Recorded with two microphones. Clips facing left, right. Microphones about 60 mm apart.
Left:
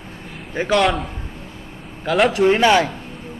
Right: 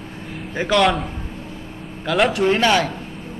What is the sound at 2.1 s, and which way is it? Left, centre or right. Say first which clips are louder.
Speech: left 2 dB; centre.